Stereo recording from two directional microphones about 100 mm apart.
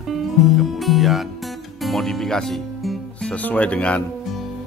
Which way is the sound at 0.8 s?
Centre (ahead or behind).